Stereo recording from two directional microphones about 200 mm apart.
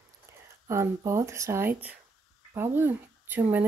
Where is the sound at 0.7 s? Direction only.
15° right (ahead or behind).